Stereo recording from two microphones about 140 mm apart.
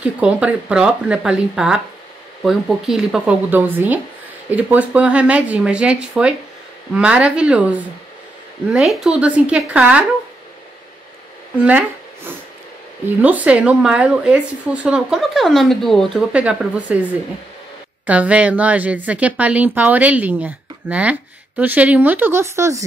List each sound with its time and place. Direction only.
0.0 s speech: 10° right (ahead or behind)
8.7 s speech: centre (ahead or behind)
13.2 s speech: 10° right (ahead or behind)
16.3 s speech: 10° right (ahead or behind)